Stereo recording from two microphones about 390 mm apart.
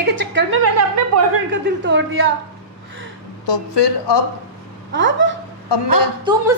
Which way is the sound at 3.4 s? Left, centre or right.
Left.